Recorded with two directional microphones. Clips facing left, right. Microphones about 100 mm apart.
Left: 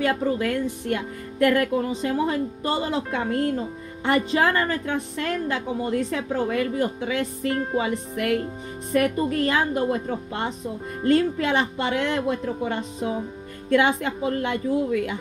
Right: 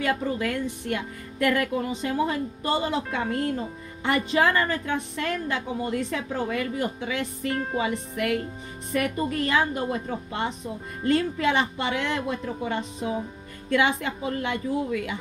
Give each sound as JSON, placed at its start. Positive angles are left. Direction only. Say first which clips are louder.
{"t": 0.0, "sound": "a woman's voice", "louder": "left 3 dB", "side_deg": 40}